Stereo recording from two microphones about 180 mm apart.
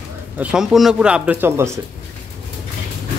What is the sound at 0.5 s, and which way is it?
Speech, centre (ahead or behind).